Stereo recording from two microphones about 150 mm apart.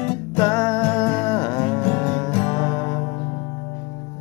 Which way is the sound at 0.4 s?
25° left (ahead or behind).